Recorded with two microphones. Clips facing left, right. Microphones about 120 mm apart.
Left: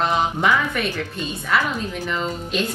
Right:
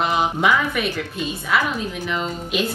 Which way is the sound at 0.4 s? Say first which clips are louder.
Right 1 dB; 5° right (ahead or behind).